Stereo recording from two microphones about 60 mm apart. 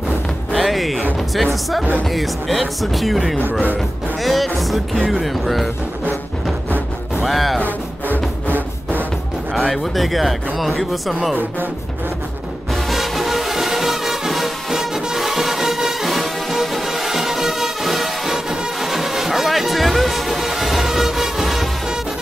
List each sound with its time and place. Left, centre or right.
0.5 s music: centre
1.3 s speech: centre
7.2 s speech: centre
8.1 s music: right
9.5 s speech: centre
12.9 s music: centre